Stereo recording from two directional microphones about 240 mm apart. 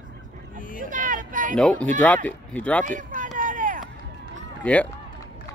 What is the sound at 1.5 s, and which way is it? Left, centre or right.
Speech, centre.